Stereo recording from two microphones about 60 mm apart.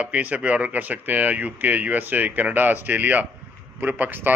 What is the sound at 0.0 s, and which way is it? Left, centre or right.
Speech, right.